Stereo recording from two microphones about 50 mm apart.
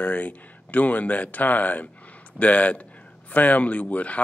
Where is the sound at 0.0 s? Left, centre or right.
Left.